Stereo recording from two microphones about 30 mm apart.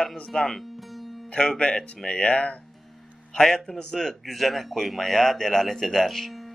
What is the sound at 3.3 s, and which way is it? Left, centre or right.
Speech, centre.